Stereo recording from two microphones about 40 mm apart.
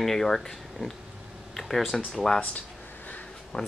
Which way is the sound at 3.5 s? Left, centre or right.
Left.